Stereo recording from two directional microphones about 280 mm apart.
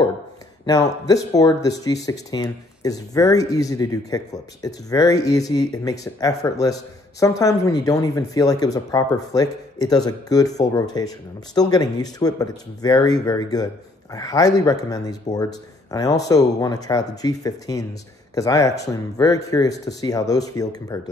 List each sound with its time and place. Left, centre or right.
0.7 s speech: centre